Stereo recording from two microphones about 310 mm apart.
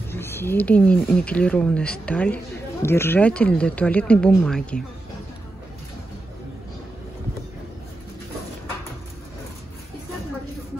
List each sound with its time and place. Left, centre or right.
0.1 s speech: centre